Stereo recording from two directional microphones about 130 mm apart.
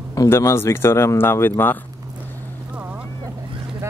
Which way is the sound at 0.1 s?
25° left (ahead or behind).